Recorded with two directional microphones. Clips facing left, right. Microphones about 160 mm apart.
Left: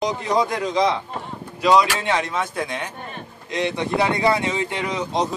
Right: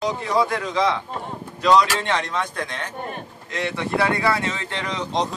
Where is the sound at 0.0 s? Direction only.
20° left (ahead or behind).